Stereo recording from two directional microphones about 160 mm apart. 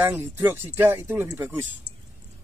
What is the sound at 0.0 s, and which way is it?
Speech, 15° right (ahead or behind).